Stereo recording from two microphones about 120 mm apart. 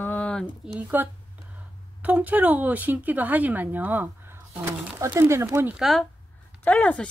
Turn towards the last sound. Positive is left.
turn(degrees=10)  # may be behind; listen again after turning